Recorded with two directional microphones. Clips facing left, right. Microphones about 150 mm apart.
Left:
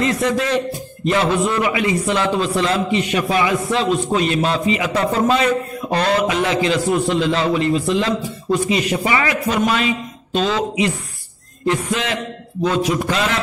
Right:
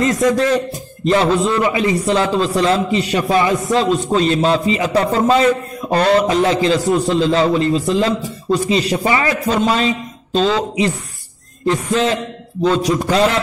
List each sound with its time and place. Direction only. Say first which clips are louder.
0.0 s a man's voice: right 4 dB; 40° right (ahead or behind)